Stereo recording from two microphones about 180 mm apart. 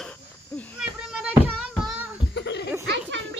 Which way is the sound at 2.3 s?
75° left (ahead or behind).